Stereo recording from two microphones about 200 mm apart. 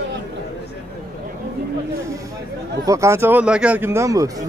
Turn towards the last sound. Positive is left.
turn(degrees=-15)  # may be behind; listen again after turning